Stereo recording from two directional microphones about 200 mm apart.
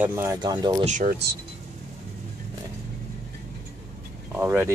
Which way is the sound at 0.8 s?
40° right (ahead or behind).